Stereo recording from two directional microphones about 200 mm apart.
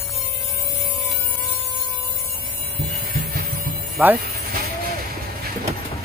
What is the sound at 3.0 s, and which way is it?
Music, 50° right (ahead or behind).